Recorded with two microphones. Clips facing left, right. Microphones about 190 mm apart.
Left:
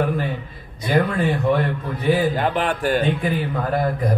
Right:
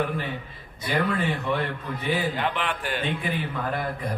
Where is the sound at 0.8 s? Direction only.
45° left (ahead or behind).